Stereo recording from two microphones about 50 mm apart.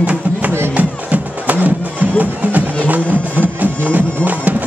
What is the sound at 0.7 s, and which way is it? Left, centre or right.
Music, right.